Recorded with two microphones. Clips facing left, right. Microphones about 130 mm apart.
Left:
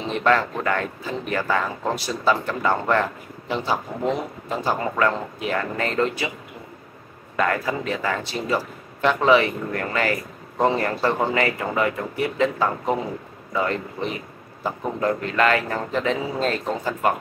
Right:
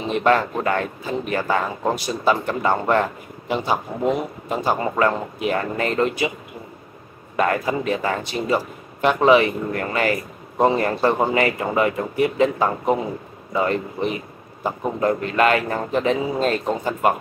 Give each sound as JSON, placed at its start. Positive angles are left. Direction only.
{"t": 0.1, "sound": "speech", "side_deg": -20}
{"t": 7.3, "sound": "speech", "side_deg": -20}